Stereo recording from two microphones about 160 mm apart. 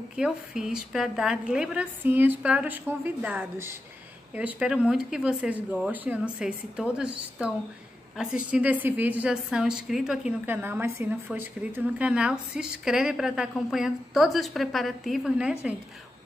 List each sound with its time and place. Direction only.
0.1 s a woman's voice: 5° right (ahead or behind)